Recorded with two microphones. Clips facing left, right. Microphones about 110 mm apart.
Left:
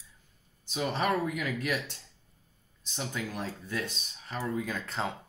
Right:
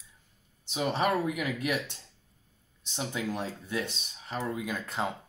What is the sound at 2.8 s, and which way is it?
Speech, 20° right (ahead or behind).